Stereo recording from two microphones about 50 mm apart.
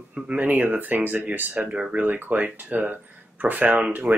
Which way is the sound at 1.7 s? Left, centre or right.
Centre.